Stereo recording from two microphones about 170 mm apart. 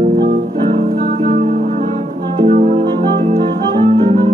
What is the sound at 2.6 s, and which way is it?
Music, 30° right (ahead or behind).